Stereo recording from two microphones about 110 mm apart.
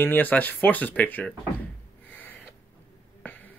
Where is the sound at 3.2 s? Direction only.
15° left (ahead or behind).